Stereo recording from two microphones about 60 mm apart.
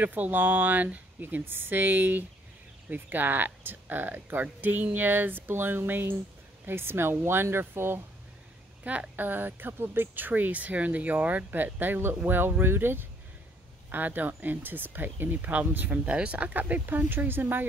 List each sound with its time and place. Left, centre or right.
0.0 s speech: right
8.8 s speech: right